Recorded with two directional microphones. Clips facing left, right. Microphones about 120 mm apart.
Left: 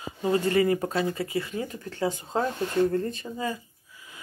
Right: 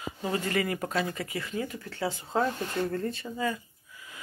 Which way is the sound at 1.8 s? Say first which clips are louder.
Left 4 dB; 45° left (ahead or behind).